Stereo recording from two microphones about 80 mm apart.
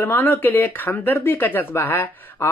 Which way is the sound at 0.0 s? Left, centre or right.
Left.